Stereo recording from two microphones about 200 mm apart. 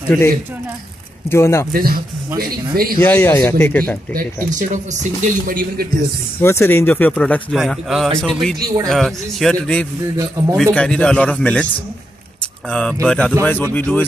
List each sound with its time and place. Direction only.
1.3 s speech: 15° left (ahead or behind)
1.7 s a man's voice: 45° right (ahead or behind)
3.0 s speech: 10° left (ahead or behind)
4.5 s speech: 40° right (ahead or behind)
6.4 s speech: 10° left (ahead or behind)
10.1 s a man's voice: 15° right (ahead or behind)
10.6 s speech: 5° left (ahead or behind)
12.6 s speech: 5° left (ahead or behind)